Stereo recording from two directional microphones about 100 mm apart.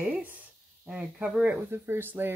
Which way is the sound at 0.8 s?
10° right (ahead or behind).